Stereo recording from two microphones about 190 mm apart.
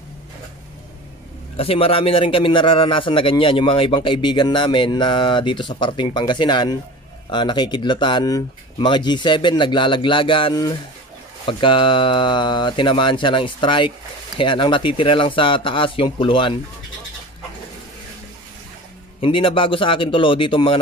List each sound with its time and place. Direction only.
1.6 s a man's voice: 30° left (ahead or behind)
19.2 s a man's voice: 25° left (ahead or behind)